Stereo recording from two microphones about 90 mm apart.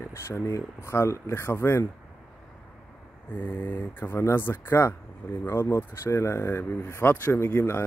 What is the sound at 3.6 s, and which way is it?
Speech, 20° left (ahead or behind).